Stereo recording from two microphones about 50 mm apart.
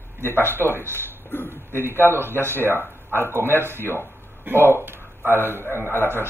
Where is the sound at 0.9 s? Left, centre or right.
Left.